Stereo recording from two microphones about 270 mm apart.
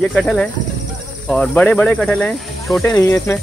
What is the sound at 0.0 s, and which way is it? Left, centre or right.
Speech, centre.